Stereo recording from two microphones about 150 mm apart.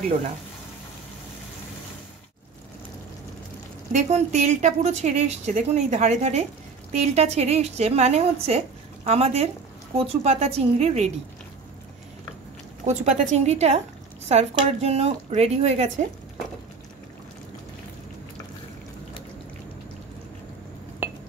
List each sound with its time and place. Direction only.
3.9 s a woman's voice: 50° right (ahead or behind)
12.8 s a woman's voice: 50° right (ahead or behind)